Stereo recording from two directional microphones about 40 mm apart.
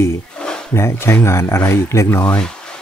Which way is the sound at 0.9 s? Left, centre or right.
Left.